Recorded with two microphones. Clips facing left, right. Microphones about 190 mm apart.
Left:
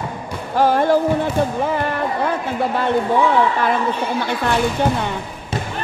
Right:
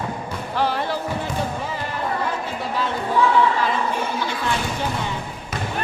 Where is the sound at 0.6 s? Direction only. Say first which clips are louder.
Left 8 dB; 50° left (ahead or behind).